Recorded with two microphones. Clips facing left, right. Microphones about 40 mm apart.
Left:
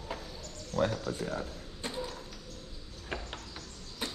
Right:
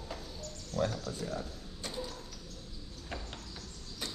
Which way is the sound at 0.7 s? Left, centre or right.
Left.